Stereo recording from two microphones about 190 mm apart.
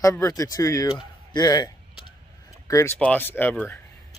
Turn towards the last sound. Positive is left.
turn(degrees=10)  # may be behind; listen again after turning